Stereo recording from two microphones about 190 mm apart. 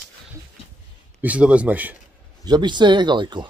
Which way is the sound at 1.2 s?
5° right (ahead or behind).